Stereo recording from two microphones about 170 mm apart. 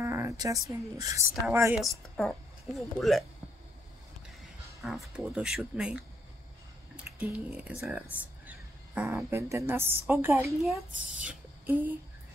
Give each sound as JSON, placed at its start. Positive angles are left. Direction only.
{"t": 0.0, "sound": "speech", "side_deg": -15}
{"t": 1.8, "sound": "a woman's voice", "side_deg": 0}
{"t": 4.8, "sound": "speech", "side_deg": 0}
{"t": 7.2, "sound": "speech", "side_deg": -10}